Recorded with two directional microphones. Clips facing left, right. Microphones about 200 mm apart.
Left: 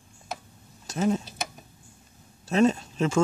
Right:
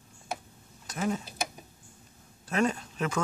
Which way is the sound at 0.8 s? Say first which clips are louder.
Left 6 dB; 25° left (ahead or behind).